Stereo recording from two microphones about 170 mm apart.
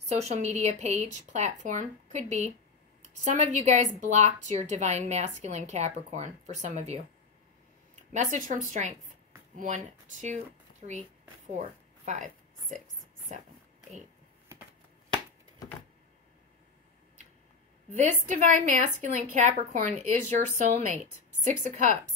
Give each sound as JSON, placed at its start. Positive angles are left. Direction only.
{"t": 0.1, "sound": "speech", "side_deg": -40}
{"t": 8.1, "sound": "speech", "side_deg": -45}
{"t": 11.5, "sound": "a sound", "side_deg": -45}
{"t": 17.9, "sound": "speech", "side_deg": -45}